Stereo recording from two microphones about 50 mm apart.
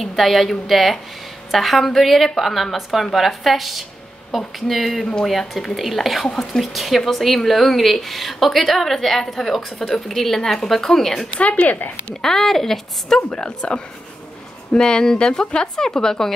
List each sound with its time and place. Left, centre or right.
0.0 s a woman's voice: centre
11.3 s speech: left
12.2 s a woman's voice: centre
13.3 s speech: centre